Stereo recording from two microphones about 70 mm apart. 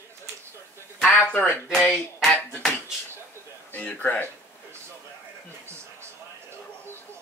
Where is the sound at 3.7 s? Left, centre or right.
Left.